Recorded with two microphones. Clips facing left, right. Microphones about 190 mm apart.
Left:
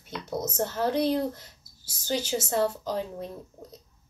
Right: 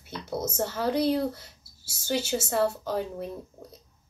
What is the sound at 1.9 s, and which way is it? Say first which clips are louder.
Speech: right 1 dB; 75° right (ahead or behind).